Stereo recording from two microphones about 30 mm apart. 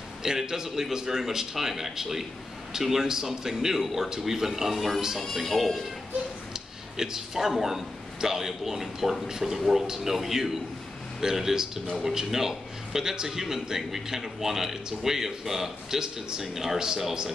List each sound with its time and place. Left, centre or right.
0.2 s speech: centre
0.7 s a man's voice: centre
0.9 s a man's voice: centre
5.3 s speech: centre
6.5 s a sound: centre
7.5 s a man's voice: centre